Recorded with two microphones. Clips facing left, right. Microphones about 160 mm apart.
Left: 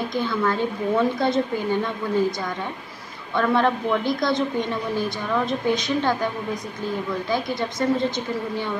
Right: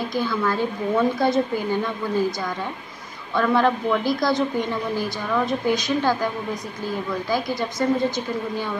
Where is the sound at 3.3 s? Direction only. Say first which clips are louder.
Right 1 dB; 20° left (ahead or behind).